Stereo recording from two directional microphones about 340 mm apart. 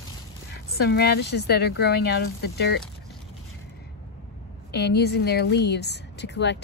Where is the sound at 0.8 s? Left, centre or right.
Left.